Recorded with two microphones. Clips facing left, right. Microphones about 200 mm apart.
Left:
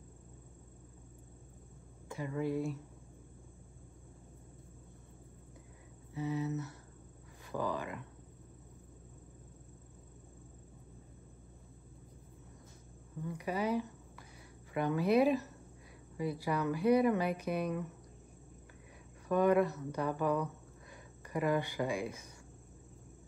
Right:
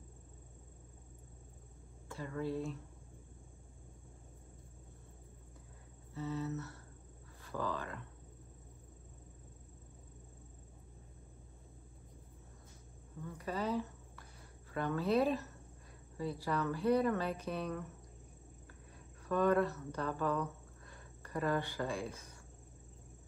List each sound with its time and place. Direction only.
2.0 s speech: 15° left (ahead or behind)
6.1 s speech: 15° left (ahead or behind)
13.3 s speech: 15° left (ahead or behind)
19.2 s speech: 15° left (ahead or behind)